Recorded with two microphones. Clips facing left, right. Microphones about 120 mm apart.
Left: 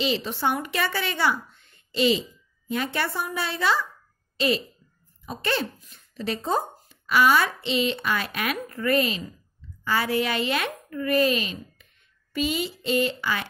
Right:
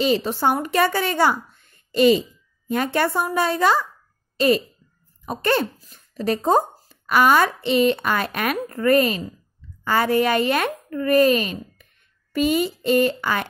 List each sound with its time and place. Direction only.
0.0 s speech: 45° right (ahead or behind)
5.2 s speech: 50° right (ahead or behind)